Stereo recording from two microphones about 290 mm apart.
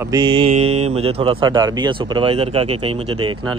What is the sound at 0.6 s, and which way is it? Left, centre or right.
Speech, right.